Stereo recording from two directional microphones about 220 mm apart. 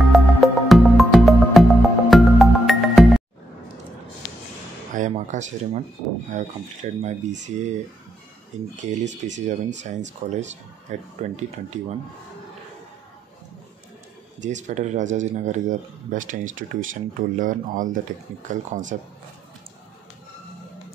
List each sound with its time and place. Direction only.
0.1 s music: centre (ahead or behind)
4.9 s a sound: 35° right (ahead or behind)
6.3 s speech: 30° right (ahead or behind)
8.7 s speech: 35° right (ahead or behind)
14.4 s speech: 35° right (ahead or behind)